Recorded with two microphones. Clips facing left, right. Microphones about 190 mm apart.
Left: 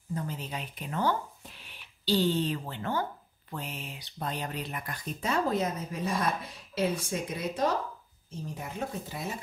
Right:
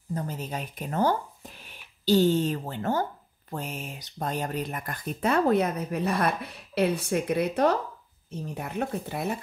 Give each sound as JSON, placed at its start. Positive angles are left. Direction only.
{"t": 0.1, "sound": "speech", "side_deg": -40}